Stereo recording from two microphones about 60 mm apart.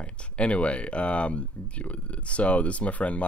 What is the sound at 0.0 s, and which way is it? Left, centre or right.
Speech, centre.